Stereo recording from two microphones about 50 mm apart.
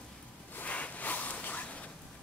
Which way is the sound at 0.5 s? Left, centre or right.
Left.